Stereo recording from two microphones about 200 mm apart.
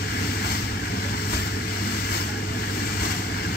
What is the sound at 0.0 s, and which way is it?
Vehicle, 50° left (ahead or behind).